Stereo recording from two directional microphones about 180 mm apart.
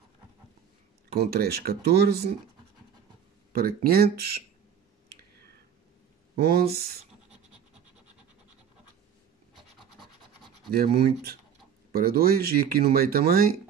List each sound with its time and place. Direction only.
1.1 s speech: 60° right (ahead or behind)
3.5 s speech: 55° right (ahead or behind)
6.3 s speech: 60° right (ahead or behind)
10.7 s speech: 60° right (ahead or behind)